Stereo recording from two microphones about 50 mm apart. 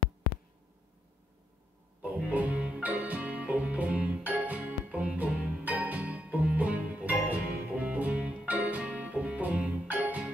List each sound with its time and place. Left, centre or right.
2.0 s music: right